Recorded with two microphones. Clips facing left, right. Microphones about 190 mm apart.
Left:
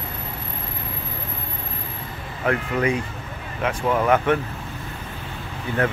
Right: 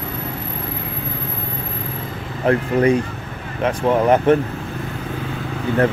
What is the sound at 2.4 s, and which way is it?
Speech, 35° right (ahead or behind).